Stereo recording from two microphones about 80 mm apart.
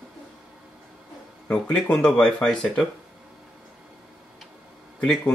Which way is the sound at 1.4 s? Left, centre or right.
Centre.